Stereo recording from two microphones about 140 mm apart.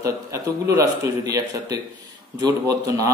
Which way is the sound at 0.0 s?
20° right (ahead or behind).